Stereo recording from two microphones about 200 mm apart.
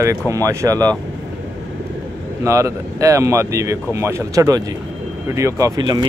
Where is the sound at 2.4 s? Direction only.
15° right (ahead or behind).